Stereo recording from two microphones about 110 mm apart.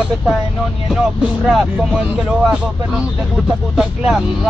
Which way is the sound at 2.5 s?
5° right (ahead or behind).